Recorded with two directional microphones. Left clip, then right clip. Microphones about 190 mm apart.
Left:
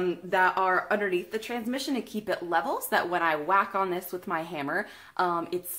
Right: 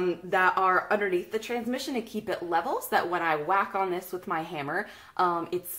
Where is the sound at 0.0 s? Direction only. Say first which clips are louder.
Even; 20° left (ahead or behind).